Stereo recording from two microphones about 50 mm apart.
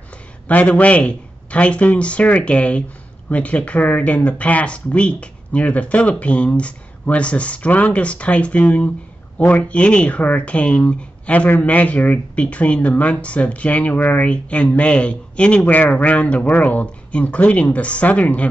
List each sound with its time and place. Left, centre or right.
0.5 s speech: left